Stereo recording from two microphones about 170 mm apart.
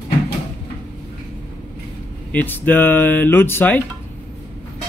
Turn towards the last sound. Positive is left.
turn(degrees=10)  # may be behind; listen again after turning